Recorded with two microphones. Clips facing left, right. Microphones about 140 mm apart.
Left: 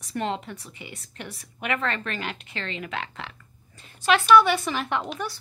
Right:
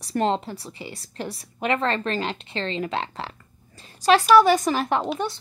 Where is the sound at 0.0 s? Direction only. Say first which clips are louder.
Right 6 dB; 35° right (ahead or behind).